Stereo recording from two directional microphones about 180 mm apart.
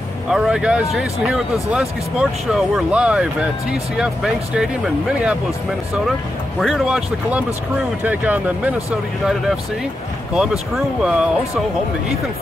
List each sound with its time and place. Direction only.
0.3 s speech: 5° right (ahead or behind)
6.6 s speech: centre (ahead or behind)
10.3 s speech: 5° right (ahead or behind)